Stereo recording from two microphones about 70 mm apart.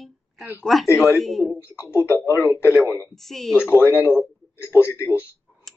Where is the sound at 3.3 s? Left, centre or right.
Centre.